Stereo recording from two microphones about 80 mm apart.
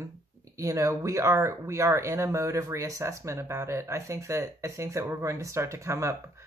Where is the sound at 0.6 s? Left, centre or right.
Right.